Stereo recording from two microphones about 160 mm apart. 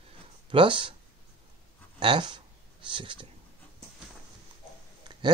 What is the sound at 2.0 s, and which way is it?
Speech, 30° right (ahead or behind).